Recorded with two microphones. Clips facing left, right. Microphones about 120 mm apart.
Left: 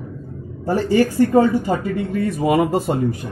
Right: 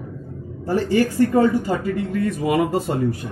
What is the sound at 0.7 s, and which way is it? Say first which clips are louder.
Speech: left 2 dB; 20° left (ahead or behind).